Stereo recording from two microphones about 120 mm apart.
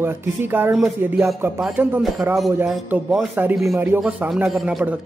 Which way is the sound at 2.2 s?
15° right (ahead or behind).